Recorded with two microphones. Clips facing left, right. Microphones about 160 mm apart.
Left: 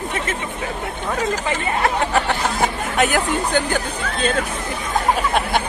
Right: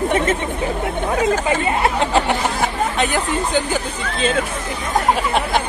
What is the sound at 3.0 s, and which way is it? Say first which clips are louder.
Speech: left 4 dB; centre (ahead or behind).